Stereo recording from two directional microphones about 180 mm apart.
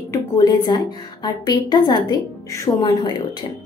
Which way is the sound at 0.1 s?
20° left (ahead or behind).